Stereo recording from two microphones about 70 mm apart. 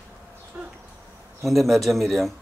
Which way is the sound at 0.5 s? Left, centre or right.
Centre.